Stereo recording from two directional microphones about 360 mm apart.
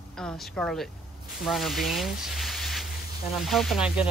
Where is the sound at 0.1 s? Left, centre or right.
Centre.